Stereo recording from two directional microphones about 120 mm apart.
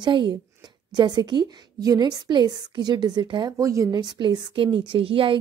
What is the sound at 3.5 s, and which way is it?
A woman's voice, 25° right (ahead or behind).